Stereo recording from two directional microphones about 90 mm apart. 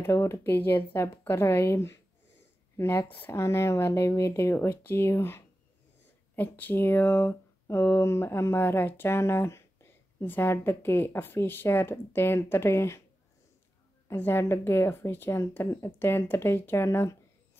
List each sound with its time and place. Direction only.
0.0 s a woman's voice: 30° left (ahead or behind)
14.0 s a woman's voice: 25° left (ahead or behind)